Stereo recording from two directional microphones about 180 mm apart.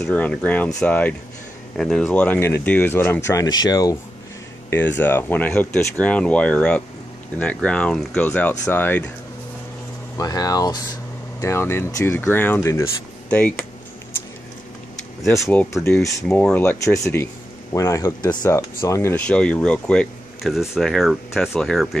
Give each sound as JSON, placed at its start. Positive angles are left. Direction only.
{"t": 0.0, "sound": "speech", "side_deg": 5}
{"t": 10.1, "sound": "speech", "side_deg": 20}
{"t": 15.2, "sound": "speech", "side_deg": 15}